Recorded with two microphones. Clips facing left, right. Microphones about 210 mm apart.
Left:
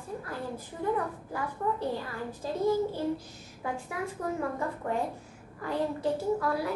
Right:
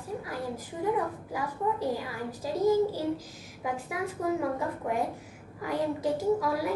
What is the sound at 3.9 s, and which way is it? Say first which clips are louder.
A woman's voice: right 5 dB; 10° right (ahead or behind).